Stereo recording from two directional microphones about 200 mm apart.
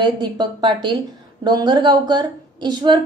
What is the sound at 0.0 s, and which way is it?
A woman's voice, 20° right (ahead or behind).